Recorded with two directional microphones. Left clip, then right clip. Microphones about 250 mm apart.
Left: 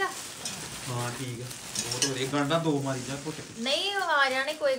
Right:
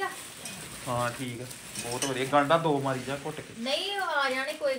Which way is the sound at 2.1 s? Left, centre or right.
Centre.